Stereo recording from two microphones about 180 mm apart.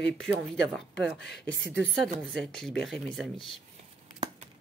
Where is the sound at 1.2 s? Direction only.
70° left (ahead or behind).